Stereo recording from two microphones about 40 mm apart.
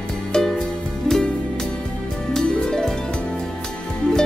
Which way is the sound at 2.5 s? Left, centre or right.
Centre.